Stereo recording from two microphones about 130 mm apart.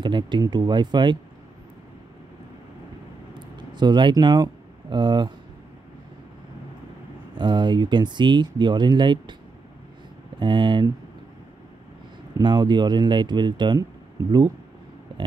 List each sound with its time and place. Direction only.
0.0 s speech: 35° right (ahead or behind)
3.3 s a sound: 35° right (ahead or behind)
7.3 s speech: 35° right (ahead or behind)
10.4 s speech: 35° right (ahead or behind)
12.4 s speech: 35° right (ahead or behind)